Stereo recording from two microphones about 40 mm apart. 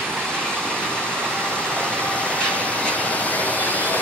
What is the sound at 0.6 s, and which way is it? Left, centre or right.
Vehicle, left.